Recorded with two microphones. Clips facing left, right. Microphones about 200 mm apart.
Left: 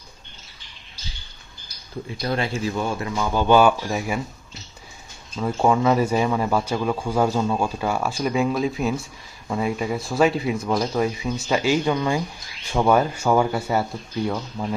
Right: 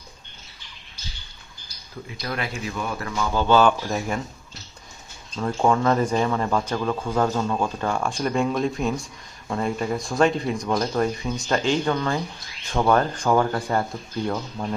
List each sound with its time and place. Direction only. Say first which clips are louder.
2.2 s speech: left 5 dB; 30° left (ahead or behind)
3.2 s speech: left 2 dB; 15° left (ahead or behind)
5.3 s speech: left 1 dB; 5° left (ahead or behind)